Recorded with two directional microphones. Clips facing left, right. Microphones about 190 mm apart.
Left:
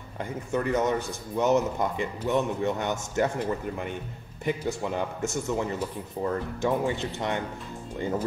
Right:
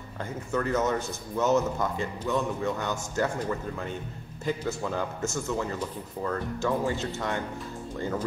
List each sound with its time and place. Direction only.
0.2 s a man's voice: 15° left (ahead or behind)
4.5 s a man's voice: 20° left (ahead or behind)